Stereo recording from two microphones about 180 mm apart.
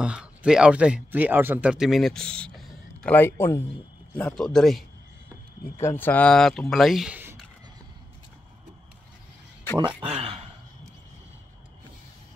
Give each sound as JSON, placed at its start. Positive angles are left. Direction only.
{"t": 0.0, "sound": "speech", "side_deg": -5}
{"t": 5.8, "sound": "speech", "side_deg": 15}
{"t": 10.0, "sound": "speech", "side_deg": -35}